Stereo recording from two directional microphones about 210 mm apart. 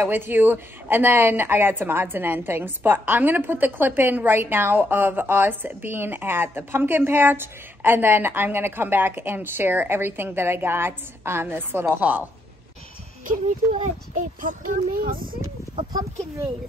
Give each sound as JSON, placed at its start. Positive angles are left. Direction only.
{"t": 0.0, "sound": "speech", "side_deg": -10}
{"t": 13.7, "sound": "speech", "side_deg": -35}
{"t": 15.7, "sound": "speech", "side_deg": -15}